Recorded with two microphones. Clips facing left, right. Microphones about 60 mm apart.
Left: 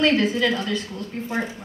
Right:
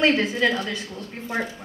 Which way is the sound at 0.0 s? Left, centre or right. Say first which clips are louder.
Left 1 dB; right.